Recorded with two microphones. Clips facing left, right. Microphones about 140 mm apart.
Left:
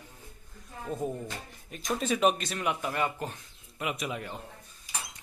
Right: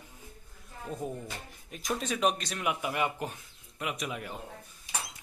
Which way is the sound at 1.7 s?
Centre (ahead or behind).